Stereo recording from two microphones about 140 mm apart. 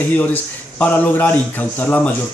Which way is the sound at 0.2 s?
10° left (ahead or behind).